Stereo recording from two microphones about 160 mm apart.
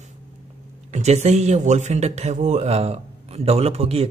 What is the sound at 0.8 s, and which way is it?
Speech, 45° right (ahead or behind).